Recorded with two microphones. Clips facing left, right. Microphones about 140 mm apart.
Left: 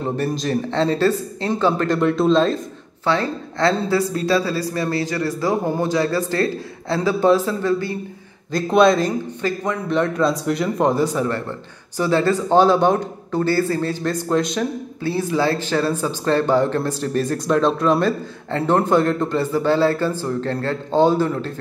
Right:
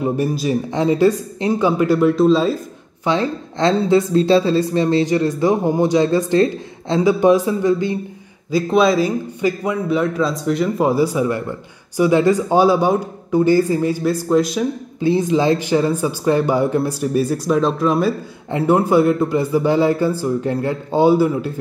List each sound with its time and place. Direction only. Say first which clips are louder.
0.0 s speech: right 3 dB; 10° right (ahead or behind)
3.1 s speech: right 2 dB; 20° right (ahead or behind)
8.5 s a man's voice: even; 5° right (ahead or behind)
15.0 s speech: right 5 dB; 20° right (ahead or behind)